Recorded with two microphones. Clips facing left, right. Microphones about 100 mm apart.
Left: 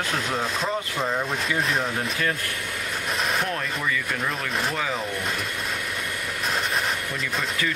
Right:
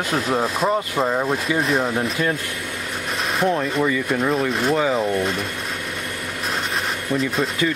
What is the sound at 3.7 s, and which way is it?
Speech, 20° right (ahead or behind).